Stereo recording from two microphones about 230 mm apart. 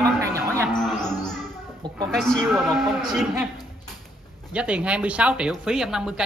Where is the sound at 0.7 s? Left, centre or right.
Centre.